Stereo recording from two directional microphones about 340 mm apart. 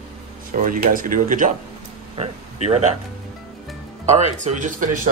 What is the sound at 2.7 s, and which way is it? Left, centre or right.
Speech, centre.